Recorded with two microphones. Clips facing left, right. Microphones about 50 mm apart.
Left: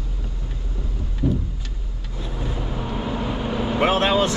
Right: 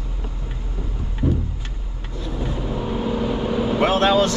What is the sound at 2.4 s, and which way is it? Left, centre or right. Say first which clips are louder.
Vehicle: right 3 dB; centre.